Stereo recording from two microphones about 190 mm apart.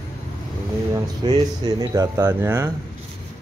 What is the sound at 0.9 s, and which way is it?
Speech, 20° right (ahead or behind).